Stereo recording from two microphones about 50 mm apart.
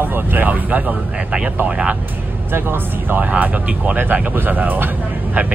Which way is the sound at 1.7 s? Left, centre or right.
Right.